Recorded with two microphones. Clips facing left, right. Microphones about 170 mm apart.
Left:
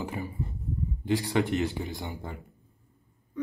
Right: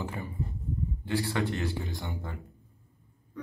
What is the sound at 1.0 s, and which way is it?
Speech, 15° left (ahead or behind).